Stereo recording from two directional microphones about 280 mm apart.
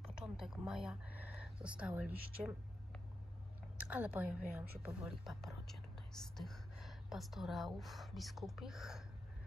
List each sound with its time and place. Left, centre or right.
0.1 s a woman's voice: centre